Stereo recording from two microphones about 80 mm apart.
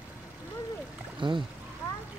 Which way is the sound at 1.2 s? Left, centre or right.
Right.